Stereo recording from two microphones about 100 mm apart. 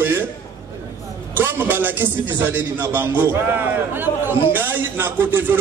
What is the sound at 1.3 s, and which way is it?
A man's voice, 20° right (ahead or behind).